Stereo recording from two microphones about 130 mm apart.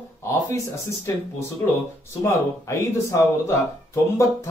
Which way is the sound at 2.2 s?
25° left (ahead or behind).